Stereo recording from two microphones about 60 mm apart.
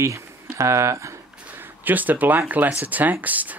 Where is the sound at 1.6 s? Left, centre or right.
Right.